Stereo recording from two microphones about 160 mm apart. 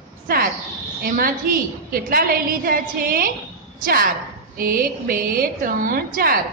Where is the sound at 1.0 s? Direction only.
65° right (ahead or behind).